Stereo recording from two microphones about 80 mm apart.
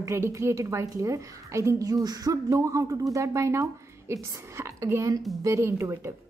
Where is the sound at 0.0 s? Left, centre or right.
Right.